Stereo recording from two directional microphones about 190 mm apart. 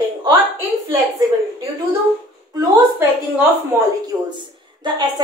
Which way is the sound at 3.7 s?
10° right (ahead or behind).